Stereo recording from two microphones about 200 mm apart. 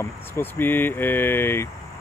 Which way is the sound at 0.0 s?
10° left (ahead or behind).